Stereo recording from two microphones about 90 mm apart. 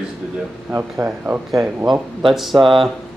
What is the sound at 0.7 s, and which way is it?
Speech, 25° right (ahead or behind).